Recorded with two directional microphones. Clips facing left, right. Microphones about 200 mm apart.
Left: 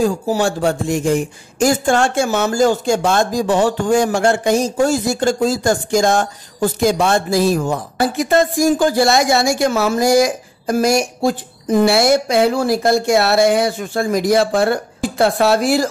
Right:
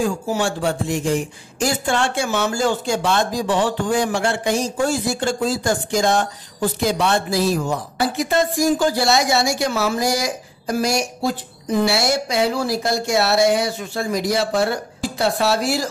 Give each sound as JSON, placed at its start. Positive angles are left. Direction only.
{"t": 0.0, "sound": "speech", "side_deg": 40}